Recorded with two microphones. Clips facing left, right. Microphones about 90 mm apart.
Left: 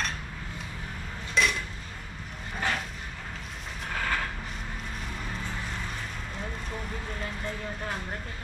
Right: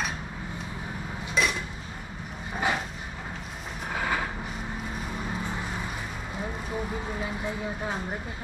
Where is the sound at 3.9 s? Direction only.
10° right (ahead or behind).